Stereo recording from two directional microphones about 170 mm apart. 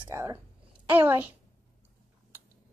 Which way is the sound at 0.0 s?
15° right (ahead or behind).